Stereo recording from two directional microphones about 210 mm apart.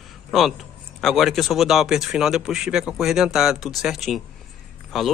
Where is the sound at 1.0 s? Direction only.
Centre (ahead or behind).